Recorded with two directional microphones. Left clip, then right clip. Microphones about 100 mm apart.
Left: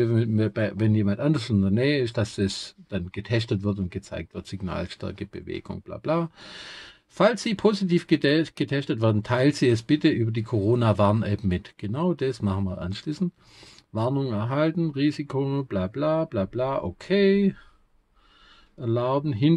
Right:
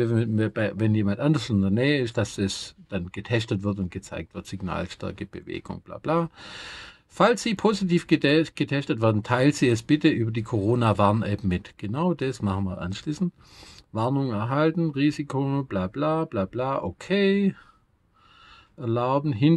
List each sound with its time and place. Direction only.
0.0 s speech: 35° right (ahead or behind)
18.8 s speech: 35° right (ahead or behind)